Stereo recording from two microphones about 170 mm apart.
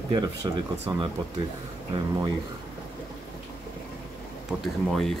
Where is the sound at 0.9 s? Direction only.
30° right (ahead or behind).